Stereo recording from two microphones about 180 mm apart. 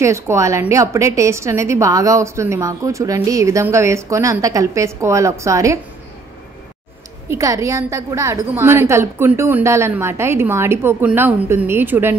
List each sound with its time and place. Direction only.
0.0 s a woman's voice: 15° right (ahead or behind)
7.2 s a woman's voice: 15° right (ahead or behind)